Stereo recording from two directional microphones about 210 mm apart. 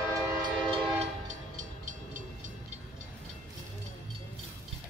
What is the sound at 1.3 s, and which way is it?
Train, 35° right (ahead or behind).